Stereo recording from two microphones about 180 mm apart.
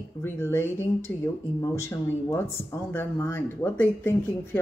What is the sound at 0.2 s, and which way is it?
Speech, 15° left (ahead or behind).